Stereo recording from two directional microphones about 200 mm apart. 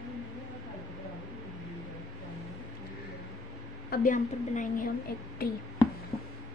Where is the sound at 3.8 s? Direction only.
45° left (ahead or behind).